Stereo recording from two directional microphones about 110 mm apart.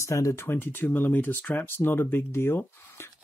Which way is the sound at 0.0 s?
25° left (ahead or behind).